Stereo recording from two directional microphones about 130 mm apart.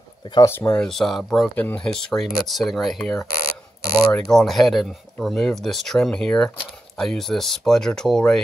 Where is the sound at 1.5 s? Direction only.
10° left (ahead or behind).